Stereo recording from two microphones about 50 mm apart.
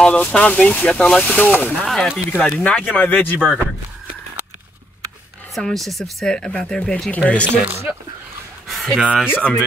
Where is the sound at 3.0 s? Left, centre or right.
Left.